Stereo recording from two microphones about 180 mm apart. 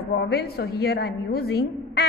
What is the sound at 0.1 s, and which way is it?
A woman's voice, 65° left (ahead or behind).